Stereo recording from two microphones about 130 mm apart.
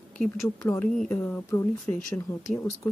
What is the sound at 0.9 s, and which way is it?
Speech, 5° left (ahead or behind).